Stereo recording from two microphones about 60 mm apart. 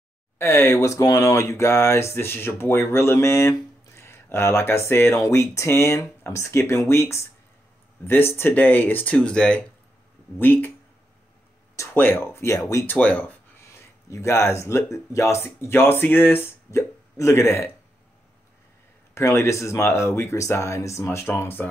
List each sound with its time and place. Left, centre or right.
0.4 s speech: left
9.1 s speech: centre
10.4 s speech: left
11.9 s speech: left
12.5 s speech: left
12.9 s speech: left
13.7 s speech: left
17.2 s speech: left
19.1 s speech: left